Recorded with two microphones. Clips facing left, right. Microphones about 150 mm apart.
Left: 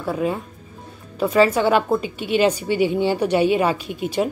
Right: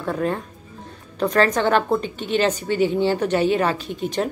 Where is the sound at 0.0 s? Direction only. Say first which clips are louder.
Left 1 dB; 5° left (ahead or behind).